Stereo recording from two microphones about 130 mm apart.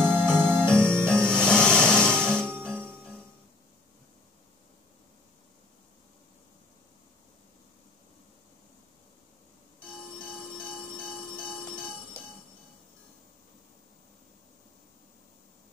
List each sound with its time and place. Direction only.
0.0 s music: 5° left (ahead or behind)
9.9 s jingle bell: 5° left (ahead or behind)